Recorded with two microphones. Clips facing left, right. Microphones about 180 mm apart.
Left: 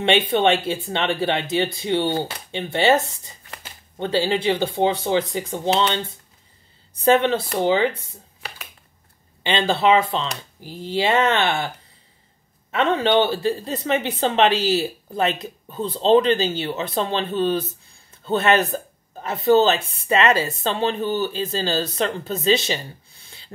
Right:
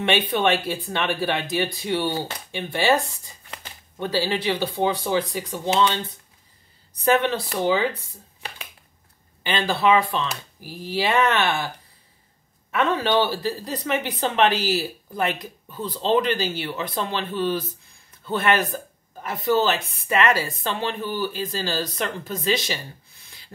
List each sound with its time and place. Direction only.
0.0 s a woman's voice: 25° left (ahead or behind)
9.4 s a woman's voice: 25° left (ahead or behind)
12.7 s a woman's voice: 25° left (ahead or behind)